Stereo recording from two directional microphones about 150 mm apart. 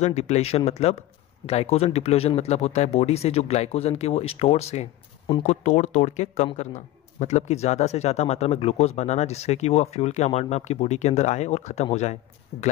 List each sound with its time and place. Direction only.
0.0 s a man's voice: 50° left (ahead or behind)